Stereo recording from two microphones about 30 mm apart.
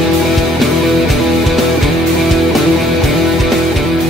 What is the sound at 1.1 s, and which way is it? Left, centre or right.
Music, centre.